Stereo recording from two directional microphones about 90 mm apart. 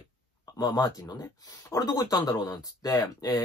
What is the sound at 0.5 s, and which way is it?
Speech, 45° left (ahead or behind).